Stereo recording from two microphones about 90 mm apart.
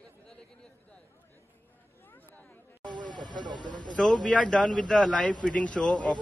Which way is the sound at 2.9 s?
55° right (ahead or behind).